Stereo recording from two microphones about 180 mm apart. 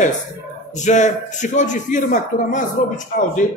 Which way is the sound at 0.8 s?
40° left (ahead or behind).